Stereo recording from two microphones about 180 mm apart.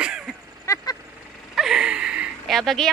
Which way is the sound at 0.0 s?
5° right (ahead or behind).